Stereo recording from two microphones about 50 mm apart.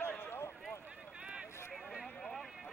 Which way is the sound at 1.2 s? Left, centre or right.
Right.